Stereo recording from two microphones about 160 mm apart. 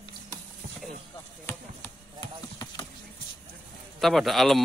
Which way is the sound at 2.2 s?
30° left (ahead or behind).